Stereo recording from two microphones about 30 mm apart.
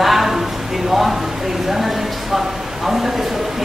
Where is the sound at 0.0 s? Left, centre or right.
Centre.